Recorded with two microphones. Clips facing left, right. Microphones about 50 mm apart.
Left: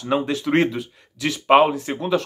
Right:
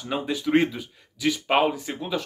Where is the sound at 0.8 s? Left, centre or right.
Centre.